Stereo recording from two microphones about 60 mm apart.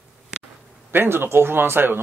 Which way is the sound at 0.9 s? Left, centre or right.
Right.